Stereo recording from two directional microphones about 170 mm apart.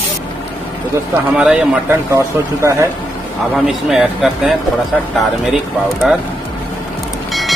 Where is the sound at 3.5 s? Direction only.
Centre (ahead or behind).